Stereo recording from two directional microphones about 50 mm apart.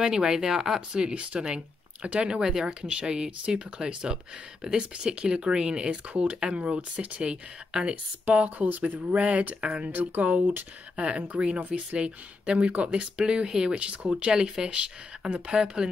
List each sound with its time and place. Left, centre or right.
0.0 s speech: centre
8.3 s speech: right
9.1 s speech: right
9.8 s speech: right; by 15.9 s centre